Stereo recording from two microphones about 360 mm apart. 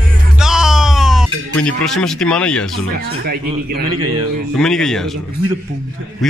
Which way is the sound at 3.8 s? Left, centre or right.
Right.